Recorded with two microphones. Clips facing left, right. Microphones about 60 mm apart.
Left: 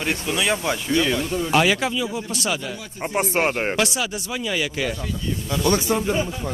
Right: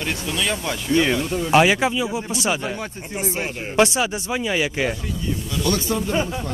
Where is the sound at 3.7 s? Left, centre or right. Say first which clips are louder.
Right 5 dB; right.